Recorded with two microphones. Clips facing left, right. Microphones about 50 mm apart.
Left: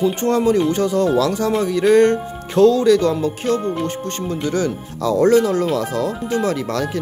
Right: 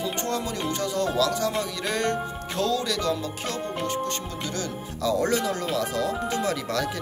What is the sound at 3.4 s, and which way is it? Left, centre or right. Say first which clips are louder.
Speech: left 9 dB; centre.